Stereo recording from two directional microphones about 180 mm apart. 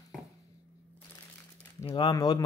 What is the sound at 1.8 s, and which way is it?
Speech, 25° left (ahead or behind).